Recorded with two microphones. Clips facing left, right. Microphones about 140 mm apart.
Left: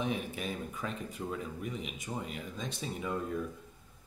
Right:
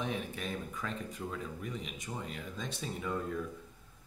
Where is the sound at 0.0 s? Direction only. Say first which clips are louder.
Left 2 dB; 5° left (ahead or behind).